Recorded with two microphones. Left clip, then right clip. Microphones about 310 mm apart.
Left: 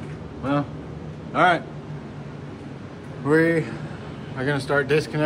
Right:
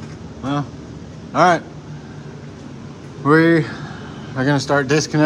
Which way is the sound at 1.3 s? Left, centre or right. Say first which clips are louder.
Right 4 dB; centre.